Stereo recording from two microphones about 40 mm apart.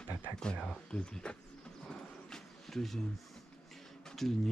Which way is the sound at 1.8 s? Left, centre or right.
Centre.